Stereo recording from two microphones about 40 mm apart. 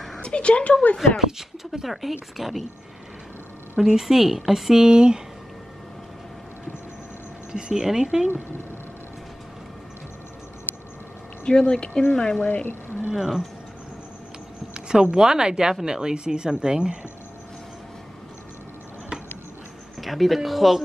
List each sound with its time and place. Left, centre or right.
0.2 s speech: left
0.9 s speech: centre
3.8 s speech: centre
7.7 s speech: centre
11.7 s speech: left
12.4 s speech: left
13.1 s speech: centre
14.7 s speech: right
20.0 s speech: centre